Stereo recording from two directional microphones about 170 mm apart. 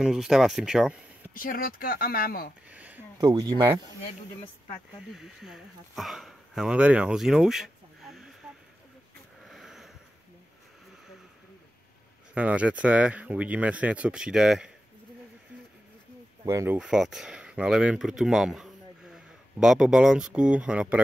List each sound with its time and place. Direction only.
0.0 s speech: centre (ahead or behind)
1.3 s speech: 55° left (ahead or behind)
2.7 s a sound: 10° right (ahead or behind)
3.3 s speech: 25° right (ahead or behind)
5.1 s speech: centre (ahead or behind)
9.4 s a sound: centre (ahead or behind)
12.4 s speech: 5° right (ahead or behind)
16.4 s speech: 15° right (ahead or behind)
16.7 s speech: 5° right (ahead or behind)